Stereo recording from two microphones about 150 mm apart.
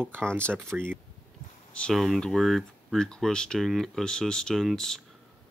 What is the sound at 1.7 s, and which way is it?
Speech, 5° left (ahead or behind).